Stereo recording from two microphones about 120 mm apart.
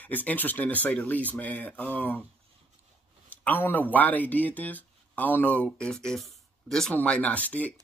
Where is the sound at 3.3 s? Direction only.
15° left (ahead or behind).